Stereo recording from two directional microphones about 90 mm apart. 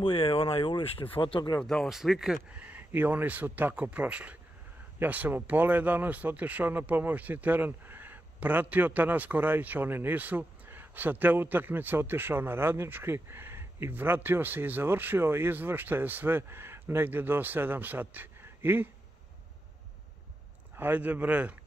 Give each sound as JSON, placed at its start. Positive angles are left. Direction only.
{"t": 0.0, "sound": "speech", "side_deg": 90}
{"t": 1.6, "sound": "speech", "side_deg": 10}
{"t": 1.9, "sound": "speech", "side_deg": -5}
{"t": 2.5, "sound": "speech", "side_deg": -15}
{"t": 20.7, "sound": "speech", "side_deg": -20}